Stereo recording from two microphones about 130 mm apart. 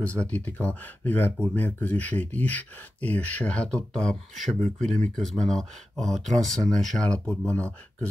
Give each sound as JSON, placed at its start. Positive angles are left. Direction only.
{"t": 0.0, "sound": "speech", "side_deg": 10}